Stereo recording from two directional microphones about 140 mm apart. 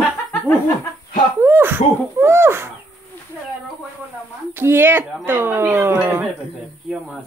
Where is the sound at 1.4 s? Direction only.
15° right (ahead or behind).